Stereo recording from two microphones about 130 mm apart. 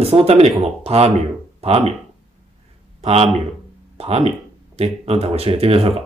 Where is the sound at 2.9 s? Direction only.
55° right (ahead or behind).